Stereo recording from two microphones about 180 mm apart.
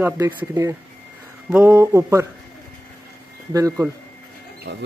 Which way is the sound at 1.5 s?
15° right (ahead or behind).